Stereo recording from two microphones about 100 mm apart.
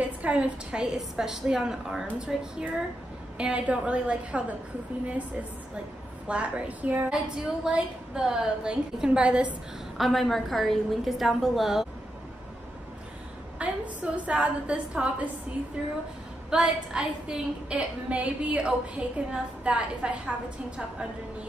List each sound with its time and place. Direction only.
0.0 s a woman's voice: 15° right (ahead or behind)
6.2 s a woman's voice: 10° right (ahead or behind)
9.9 s a woman's voice: centre (ahead or behind)
13.6 s a sound: 15° right (ahead or behind)
14.1 s a woman's voice: 15° right (ahead or behind)
16.4 s a woman's voice: 10° right (ahead or behind)